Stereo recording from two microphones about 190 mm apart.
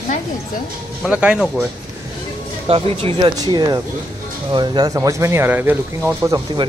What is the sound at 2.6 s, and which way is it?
Speech, 30° right (ahead or behind).